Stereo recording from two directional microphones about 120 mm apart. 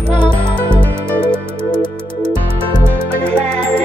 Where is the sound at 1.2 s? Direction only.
40° left (ahead or behind).